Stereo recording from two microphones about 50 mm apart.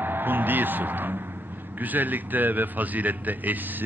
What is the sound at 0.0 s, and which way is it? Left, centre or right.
A man's voice, right.